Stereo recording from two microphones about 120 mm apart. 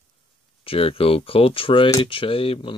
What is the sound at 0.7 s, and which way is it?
Speech, 50° left (ahead or behind).